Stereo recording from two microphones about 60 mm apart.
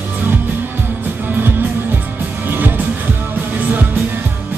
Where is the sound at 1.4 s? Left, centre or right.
Right.